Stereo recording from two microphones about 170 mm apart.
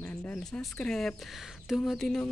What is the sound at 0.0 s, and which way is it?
Speech, 5° left (ahead or behind).